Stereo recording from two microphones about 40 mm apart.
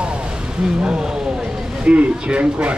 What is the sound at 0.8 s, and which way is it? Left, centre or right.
A man's voice, centre.